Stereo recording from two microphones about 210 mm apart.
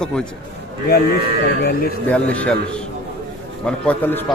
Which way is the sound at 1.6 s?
45° left (ahead or behind).